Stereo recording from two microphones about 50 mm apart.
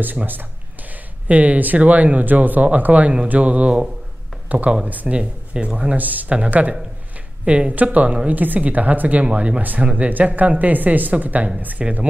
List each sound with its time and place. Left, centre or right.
0.0 s speech: right
5.9 s speech: right
11.8 s speech: right